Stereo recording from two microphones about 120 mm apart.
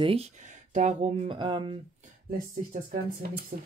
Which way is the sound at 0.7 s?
75° right (ahead or behind).